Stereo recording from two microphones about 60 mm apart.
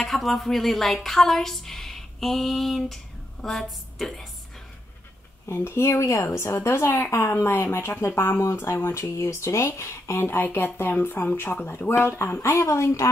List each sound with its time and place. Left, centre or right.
0.0 s a woman's voice: centre
1.0 s a sound: centre
5.5 s speech: left